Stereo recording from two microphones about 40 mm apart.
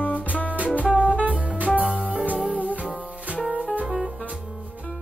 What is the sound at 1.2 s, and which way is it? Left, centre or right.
Music, right.